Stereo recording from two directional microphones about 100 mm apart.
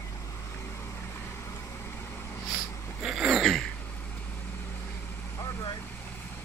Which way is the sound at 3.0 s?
5° right (ahead or behind).